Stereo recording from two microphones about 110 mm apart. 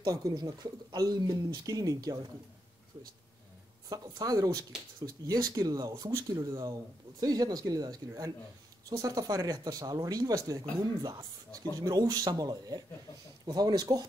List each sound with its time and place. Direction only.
0.0 s speech: 35° right (ahead or behind)
3.9 s speech: 35° right (ahead or behind)